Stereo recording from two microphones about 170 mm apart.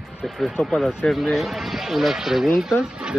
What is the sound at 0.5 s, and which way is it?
Speech, 5° left (ahead or behind).